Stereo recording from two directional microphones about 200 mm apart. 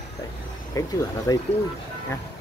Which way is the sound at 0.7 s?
15° left (ahead or behind).